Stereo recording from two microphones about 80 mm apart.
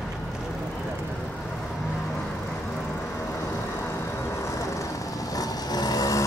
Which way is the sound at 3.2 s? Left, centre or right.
Left.